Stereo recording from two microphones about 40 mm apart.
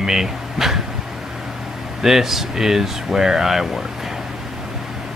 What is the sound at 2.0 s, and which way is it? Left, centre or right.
Speech, centre.